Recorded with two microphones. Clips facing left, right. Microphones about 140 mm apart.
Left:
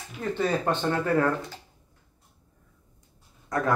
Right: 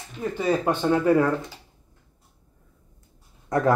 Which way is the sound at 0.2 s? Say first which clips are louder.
Right 2 dB; 10° right (ahead or behind).